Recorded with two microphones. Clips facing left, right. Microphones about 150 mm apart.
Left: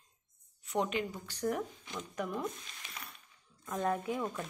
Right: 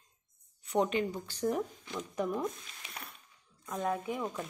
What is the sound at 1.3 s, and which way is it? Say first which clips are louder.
Speech: right 2 dB; 10° right (ahead or behind).